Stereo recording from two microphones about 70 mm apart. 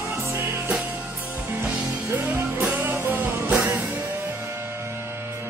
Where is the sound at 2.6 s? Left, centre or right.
Right.